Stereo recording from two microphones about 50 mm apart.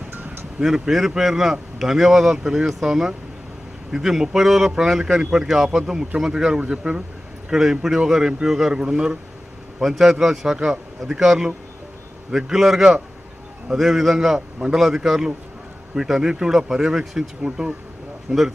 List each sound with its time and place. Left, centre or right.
0.6 s speech: centre
9.8 s speech: centre